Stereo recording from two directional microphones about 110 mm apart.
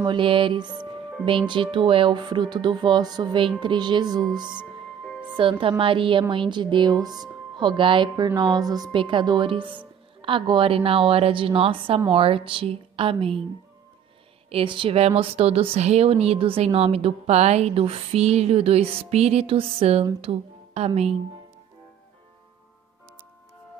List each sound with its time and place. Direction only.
0.0 s music: 50° right (ahead or behind)
1.2 s speech: 50° right (ahead or behind)
8.4 s a woman's voice: 40° right (ahead or behind); by 13.4 s 55° right (ahead or behind)
14.5 s speech: 50° right (ahead or behind); by 21.2 s 70° right (ahead or behind)